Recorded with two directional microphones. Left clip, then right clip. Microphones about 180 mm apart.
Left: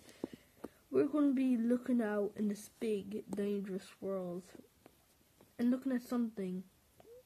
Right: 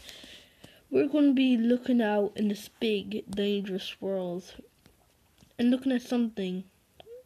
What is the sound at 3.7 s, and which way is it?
Speech, 25° right (ahead or behind).